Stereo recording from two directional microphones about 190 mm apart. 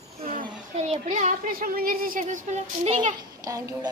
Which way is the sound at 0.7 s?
35° right (ahead or behind).